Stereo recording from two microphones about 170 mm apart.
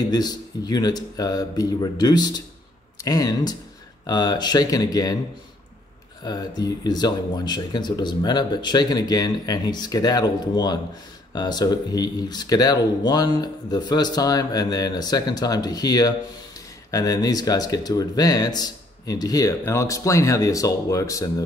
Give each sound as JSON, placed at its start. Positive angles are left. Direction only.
{"t": 0.1, "sound": "speech", "side_deg": 25}
{"t": 6.2, "sound": "speech", "side_deg": 25}